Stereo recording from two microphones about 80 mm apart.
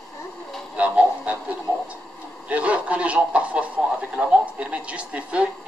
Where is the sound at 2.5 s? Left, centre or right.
Centre.